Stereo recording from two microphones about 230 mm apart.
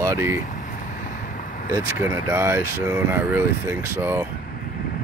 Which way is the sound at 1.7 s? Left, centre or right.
Centre.